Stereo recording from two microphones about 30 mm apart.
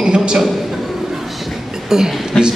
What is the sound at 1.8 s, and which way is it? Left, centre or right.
Speech, centre.